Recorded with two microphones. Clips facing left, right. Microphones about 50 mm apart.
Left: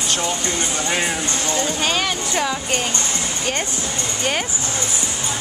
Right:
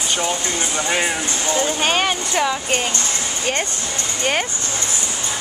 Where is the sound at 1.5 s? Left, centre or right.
Right.